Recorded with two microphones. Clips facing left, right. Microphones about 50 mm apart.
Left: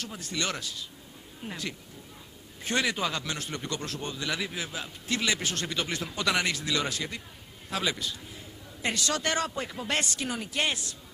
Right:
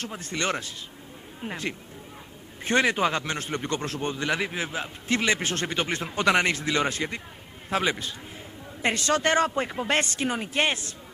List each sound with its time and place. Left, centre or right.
0.0 s a man's voice: right